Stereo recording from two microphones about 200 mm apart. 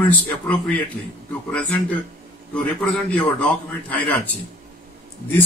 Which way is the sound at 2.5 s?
5° left (ahead or behind).